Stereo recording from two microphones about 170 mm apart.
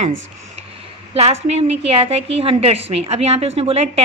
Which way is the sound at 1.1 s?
40° right (ahead or behind).